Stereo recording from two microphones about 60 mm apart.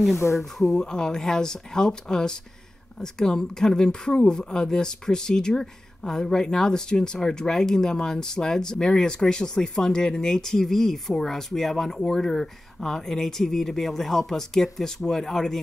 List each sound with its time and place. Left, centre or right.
0.4 s speech: centre
0.8 s speech: centre